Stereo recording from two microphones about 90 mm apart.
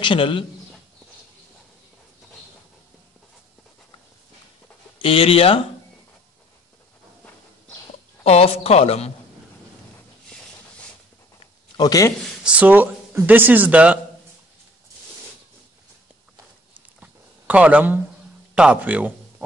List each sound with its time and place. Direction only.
0.0 s a man's voice: 65° left (ahead or behind)
4.9 s speech: 90° left
8.2 s speech: 90° left
11.8 s speech: 40° left (ahead or behind)
12.4 s speech: 15° right (ahead or behind)
17.0 s a sound: 15° right (ahead or behind)
18.5 s speech: 10° right (ahead or behind)